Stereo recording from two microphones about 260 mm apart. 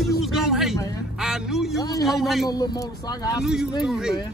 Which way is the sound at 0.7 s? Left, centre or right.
Centre.